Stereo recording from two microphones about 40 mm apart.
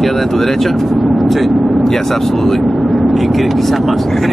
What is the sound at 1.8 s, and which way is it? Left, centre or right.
Speech, centre.